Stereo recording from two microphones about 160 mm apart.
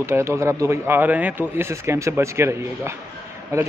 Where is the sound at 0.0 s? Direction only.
15° right (ahead or behind).